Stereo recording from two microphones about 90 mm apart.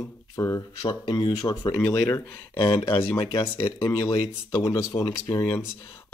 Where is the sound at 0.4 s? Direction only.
35° left (ahead or behind).